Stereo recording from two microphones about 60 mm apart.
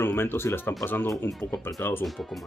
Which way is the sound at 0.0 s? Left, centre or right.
Left.